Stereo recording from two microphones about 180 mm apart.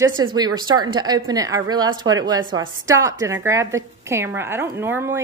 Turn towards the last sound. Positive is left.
turn(degrees=-15)  # may be behind; listen again after turning